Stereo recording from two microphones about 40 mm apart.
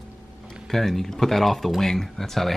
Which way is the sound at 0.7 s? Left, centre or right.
Centre.